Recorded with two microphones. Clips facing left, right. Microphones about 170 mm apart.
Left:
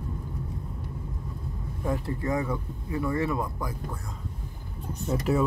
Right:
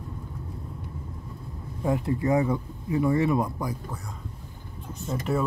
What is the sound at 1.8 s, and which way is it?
Speech, 20° right (ahead or behind).